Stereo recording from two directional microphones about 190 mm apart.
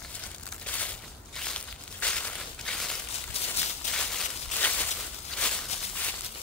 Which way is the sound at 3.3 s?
30° left (ahead or behind).